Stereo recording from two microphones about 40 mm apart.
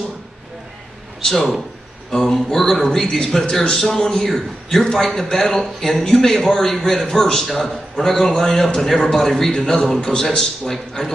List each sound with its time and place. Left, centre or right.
1.2 s a man's voice: centre